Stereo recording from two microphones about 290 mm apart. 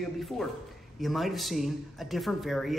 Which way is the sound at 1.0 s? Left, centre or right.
Centre.